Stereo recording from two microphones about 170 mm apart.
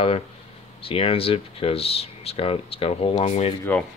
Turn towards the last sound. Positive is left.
turn(degrees=35)  # may be behind; listen again after turning